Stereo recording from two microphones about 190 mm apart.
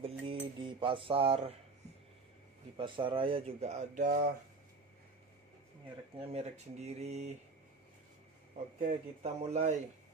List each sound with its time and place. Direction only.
0.0 s a sound: 30° right (ahead or behind)
2.8 s speech: 25° right (ahead or behind); by 4.3 s 40° right (ahead or behind)
6.1 s speech: 30° right (ahead or behind)
9.2 s speech: 35° right (ahead or behind)